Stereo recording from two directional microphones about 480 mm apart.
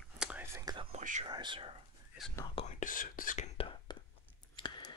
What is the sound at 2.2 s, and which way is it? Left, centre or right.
Whispering, centre.